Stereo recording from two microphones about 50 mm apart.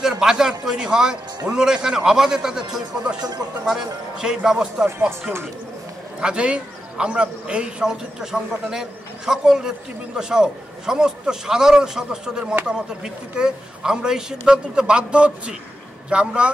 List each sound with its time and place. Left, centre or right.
0.0 s a man's voice: centre
6.2 s a man's voice: right